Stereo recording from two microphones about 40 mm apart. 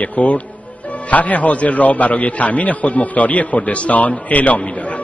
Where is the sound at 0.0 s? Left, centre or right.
Left.